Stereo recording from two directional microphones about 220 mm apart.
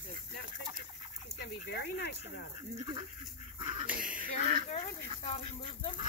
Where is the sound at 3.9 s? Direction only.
5° right (ahead or behind).